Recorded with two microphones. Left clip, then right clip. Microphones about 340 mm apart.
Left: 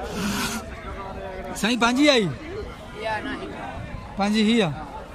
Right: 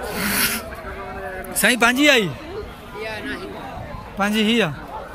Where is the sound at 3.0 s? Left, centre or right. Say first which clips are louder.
Left 1 dB; left.